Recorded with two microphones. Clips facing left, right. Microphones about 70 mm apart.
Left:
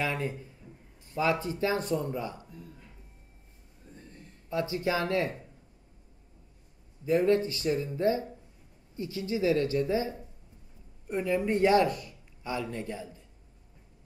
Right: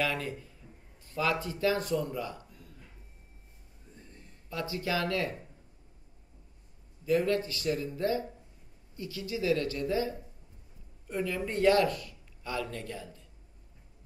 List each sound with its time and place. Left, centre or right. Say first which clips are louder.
0.0 s speech: left 1 dB; left
4.5 s speech: left 4 dB; left
7.1 s speech: left 3 dB; left